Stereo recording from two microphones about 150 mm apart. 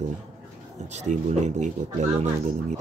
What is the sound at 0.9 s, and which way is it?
Speech, 50° right (ahead or behind).